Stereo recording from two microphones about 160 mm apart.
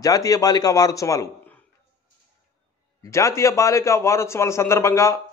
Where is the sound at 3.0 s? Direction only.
20° left (ahead or behind).